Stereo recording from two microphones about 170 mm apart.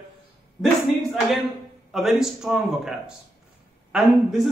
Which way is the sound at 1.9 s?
Centre (ahead or behind).